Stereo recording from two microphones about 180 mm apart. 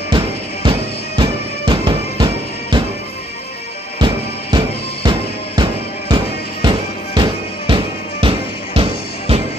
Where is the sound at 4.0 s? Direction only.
25° right (ahead or behind).